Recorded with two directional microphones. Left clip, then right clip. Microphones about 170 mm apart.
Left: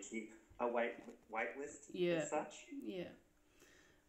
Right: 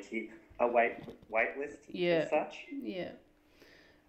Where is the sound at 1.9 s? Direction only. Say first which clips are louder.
Right 9 dB; 40° right (ahead or behind).